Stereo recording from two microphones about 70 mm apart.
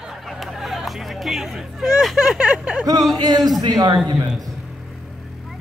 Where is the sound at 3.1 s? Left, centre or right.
Right.